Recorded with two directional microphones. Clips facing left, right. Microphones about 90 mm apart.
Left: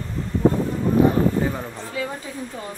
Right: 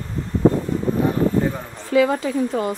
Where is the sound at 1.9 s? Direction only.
90° right.